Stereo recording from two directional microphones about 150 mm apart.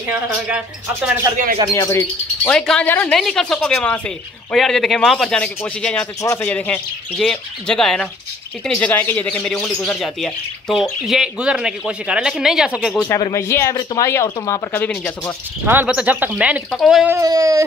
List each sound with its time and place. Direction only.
0.3 s speech: 5° right (ahead or behind)
1.7 s speech: 20° left (ahead or behind)
2.5 s speech: 5° left (ahead or behind)
13.3 s speech: 20° left (ahead or behind)
15.6 s speech: 15° right (ahead or behind)
17.1 s speech: 20° right (ahead or behind)